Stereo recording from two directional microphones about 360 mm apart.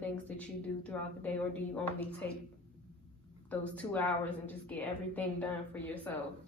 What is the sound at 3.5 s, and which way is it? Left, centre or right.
A woman's voice, centre.